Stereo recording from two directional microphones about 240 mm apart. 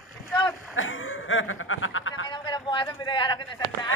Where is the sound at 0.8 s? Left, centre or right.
Left.